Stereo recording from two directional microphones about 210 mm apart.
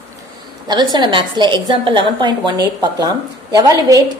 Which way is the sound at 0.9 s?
20° right (ahead or behind).